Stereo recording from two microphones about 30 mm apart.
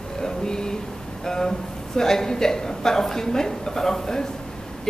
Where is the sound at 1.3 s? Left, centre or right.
Centre.